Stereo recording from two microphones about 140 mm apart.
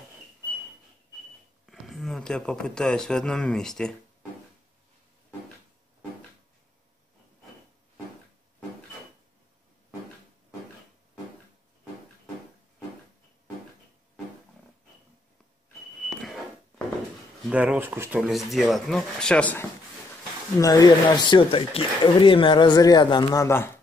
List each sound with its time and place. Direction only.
1.7 s speech: centre (ahead or behind)
17.5 s a sound: 10° right (ahead or behind)
18.2 s speech: centre (ahead or behind)
20.6 s speech: 30° left (ahead or behind)
23.4 s speech: 20° left (ahead or behind)